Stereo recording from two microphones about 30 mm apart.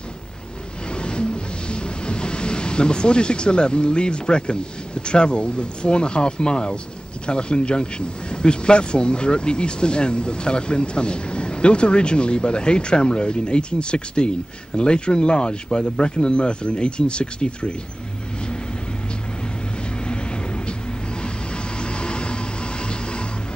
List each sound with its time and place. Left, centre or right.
1.0 s speech: left
22.0 s vehicle: left